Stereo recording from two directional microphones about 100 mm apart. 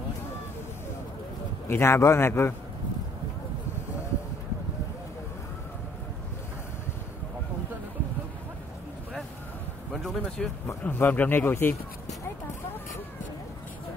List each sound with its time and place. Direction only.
1.7 s speech: 25° left (ahead or behind)
9.9 s a sound: 5° left (ahead or behind)
10.8 s speech: 20° left (ahead or behind)